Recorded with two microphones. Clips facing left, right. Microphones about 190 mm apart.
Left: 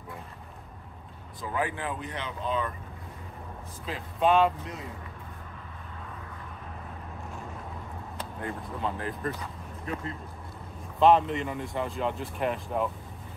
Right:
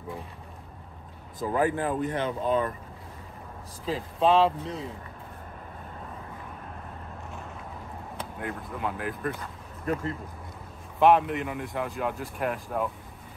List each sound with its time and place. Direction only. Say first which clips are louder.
1.5 s speech: right 6 dB; 45° right (ahead or behind)
3.8 s speech: right 2 dB; 30° right (ahead or behind)
8.4 s speech: even; 10° right (ahead or behind)
11.0 s speech: even; 10° right (ahead or behind)